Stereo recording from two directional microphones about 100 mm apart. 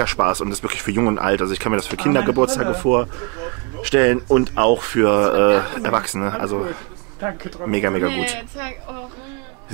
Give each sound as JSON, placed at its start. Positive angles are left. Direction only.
{"t": 0.0, "sound": "speech", "side_deg": -10}